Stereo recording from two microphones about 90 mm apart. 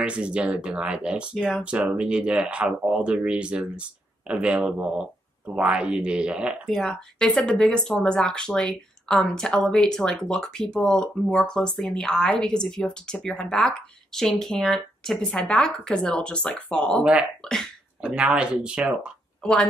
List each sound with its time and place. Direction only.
0.0 s speech: 10° right (ahead or behind)
6.6 s speech: 5° left (ahead or behind)
17.0 s speech: 10° right (ahead or behind)